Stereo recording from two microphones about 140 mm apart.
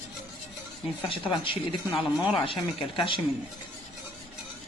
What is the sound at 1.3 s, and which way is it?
Speech, 35° left (ahead or behind).